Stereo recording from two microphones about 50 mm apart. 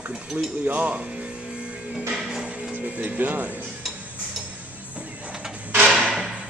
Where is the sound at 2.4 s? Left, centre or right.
Centre.